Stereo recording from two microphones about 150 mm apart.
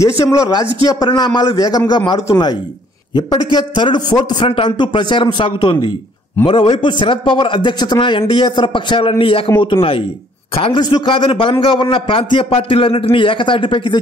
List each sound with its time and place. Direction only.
0.2 s a man's voice: 20° left (ahead or behind)